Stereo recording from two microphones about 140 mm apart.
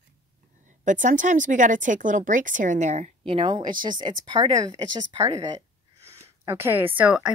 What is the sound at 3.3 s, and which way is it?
A woman's voice, 35° right (ahead or behind).